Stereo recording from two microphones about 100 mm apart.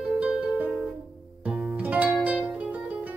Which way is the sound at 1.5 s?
15° right (ahead or behind).